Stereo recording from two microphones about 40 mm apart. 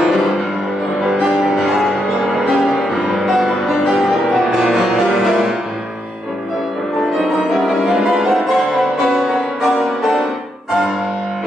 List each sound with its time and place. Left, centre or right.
1.8 s music: centre
7.2 s music: centre
9.1 s music: centre